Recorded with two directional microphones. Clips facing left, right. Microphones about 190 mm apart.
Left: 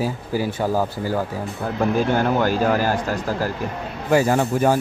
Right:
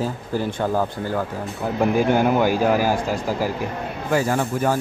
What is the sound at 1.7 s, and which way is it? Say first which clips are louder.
Speech: right 1 dB; 10° right (ahead or behind).